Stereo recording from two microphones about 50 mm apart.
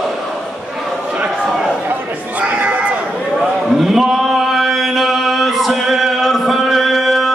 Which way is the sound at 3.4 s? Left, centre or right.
Centre.